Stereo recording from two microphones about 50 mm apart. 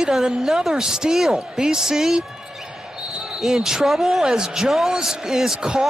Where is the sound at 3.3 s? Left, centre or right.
Centre.